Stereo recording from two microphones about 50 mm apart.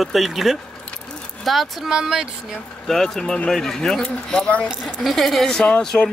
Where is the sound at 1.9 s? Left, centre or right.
Centre.